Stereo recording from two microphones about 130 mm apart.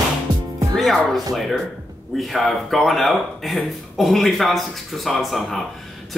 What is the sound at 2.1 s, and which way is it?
Speech, centre (ahead or behind).